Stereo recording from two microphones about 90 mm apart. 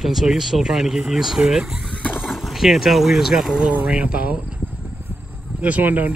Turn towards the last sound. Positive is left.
turn(degrees=-20)  # may be behind; listen again after turning